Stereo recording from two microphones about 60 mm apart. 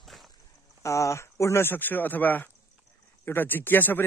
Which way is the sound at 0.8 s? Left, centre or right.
Left.